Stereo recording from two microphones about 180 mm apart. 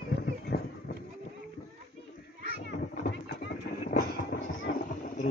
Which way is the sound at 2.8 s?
45° left (ahead or behind).